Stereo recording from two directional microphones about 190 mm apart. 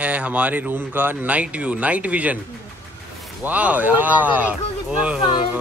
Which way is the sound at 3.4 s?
5° right (ahead or behind).